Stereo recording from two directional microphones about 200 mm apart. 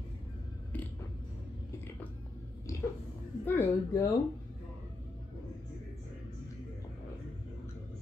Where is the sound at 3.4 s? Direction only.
10° left (ahead or behind).